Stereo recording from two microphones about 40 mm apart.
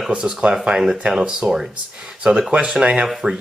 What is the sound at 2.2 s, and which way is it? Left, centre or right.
Speech, right.